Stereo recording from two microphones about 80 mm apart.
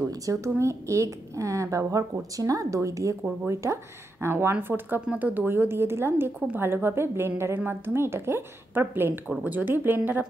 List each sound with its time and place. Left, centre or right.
0.1 s a woman's voice: right